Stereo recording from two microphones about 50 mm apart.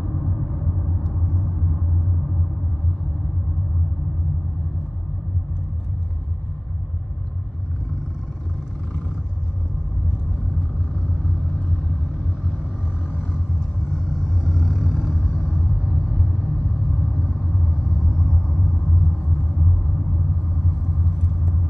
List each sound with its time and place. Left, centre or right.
1.0 s vehicle: centre
10.9 s vehicle: centre
19.0 s rumble: centre
20.5 s vehicle: centre